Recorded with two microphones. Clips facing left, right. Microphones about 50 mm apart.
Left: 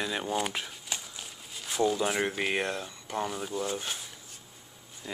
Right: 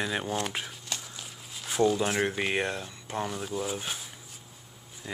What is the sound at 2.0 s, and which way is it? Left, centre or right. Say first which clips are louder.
Speech: right 1 dB; centre.